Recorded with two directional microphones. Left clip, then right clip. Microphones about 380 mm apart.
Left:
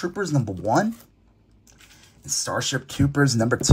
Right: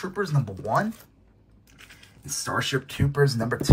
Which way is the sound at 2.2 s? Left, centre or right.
Centre.